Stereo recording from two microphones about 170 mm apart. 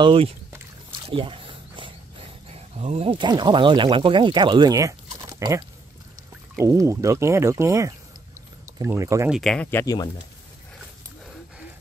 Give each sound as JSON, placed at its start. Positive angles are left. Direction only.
{"t": 0.0, "sound": "speech", "side_deg": -35}
{"t": 1.0, "sound": "a sound", "side_deg": -30}
{"t": 2.5, "sound": "speech", "side_deg": -40}
{"t": 6.6, "sound": "speech", "side_deg": -20}
{"t": 9.3, "sound": "speech", "side_deg": 0}